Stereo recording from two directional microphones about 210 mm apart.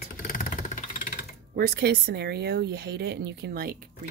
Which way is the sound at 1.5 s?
50° right (ahead or behind).